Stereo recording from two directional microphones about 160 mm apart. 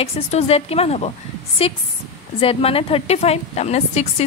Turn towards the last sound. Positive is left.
turn(degrees=40)  # may be behind; listen again after turning